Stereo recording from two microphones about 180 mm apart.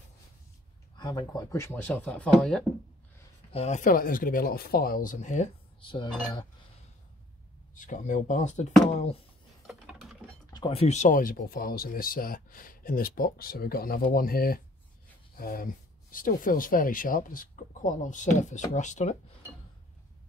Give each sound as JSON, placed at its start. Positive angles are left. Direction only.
{"t": 0.9, "sound": "speech", "side_deg": 20}
{"t": 3.5, "sound": "speech", "side_deg": 40}
{"t": 5.8, "sound": "cutlery", "side_deg": 25}
{"t": 7.7, "sound": "speech", "side_deg": 45}
{"t": 9.7, "sound": "a sound", "side_deg": 0}
{"t": 10.5, "sound": "speech", "side_deg": 30}